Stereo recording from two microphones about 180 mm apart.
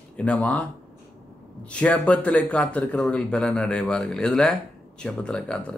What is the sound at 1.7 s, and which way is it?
Speech, 5° left (ahead or behind).